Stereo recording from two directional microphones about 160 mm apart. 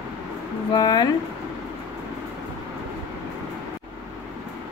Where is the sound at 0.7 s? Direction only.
25° left (ahead or behind).